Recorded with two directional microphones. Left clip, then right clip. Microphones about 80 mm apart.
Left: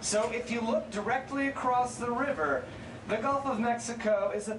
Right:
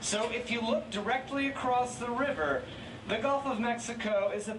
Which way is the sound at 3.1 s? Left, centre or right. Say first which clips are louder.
Left 1 dB; centre.